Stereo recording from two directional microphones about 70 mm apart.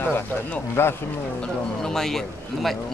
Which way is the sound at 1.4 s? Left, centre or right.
Centre.